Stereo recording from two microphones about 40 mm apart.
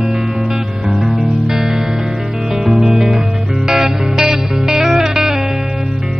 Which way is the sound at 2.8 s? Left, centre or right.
Centre.